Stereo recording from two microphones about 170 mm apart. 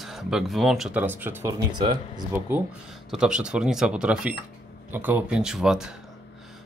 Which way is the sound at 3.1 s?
5° right (ahead or behind).